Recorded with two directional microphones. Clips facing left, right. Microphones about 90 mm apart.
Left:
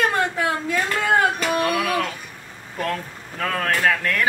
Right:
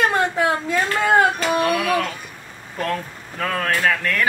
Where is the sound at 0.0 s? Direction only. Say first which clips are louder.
Right 2 dB; 25° right (ahead or behind).